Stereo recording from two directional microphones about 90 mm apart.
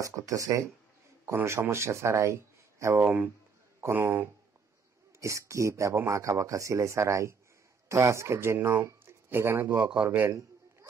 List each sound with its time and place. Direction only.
0.0 s speech: 40° right (ahead or behind)
5.2 s speech: 35° right (ahead or behind)